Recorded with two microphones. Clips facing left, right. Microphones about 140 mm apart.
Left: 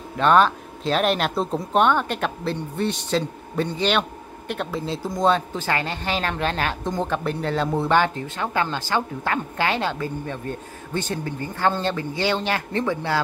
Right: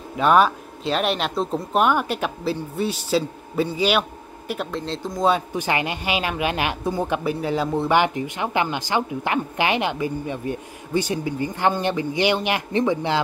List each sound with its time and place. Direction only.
0.2 s speech: 10° right (ahead or behind)
7.9 s speech: 15° right (ahead or behind)